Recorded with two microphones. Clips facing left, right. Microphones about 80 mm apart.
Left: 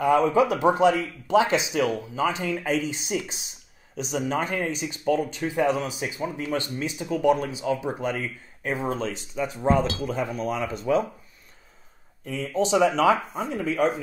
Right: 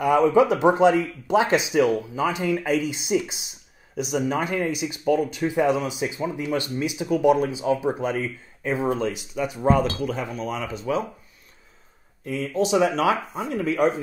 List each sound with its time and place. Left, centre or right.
0.0 s speech: centre
2.7 s speech: left
3.9 s speech: centre
12.4 s speech: centre